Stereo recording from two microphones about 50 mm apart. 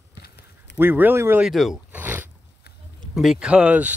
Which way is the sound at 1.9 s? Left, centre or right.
Right.